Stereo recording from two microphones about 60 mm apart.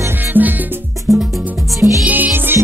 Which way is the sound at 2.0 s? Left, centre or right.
Right.